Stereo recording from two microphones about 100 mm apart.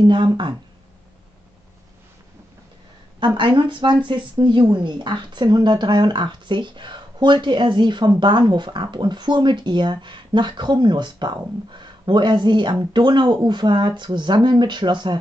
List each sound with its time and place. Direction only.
0.0 s speech: 50° right (ahead or behind)
3.3 s speech: 55° right (ahead or behind)